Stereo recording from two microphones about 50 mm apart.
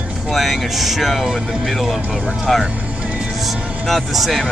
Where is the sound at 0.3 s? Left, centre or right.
Centre.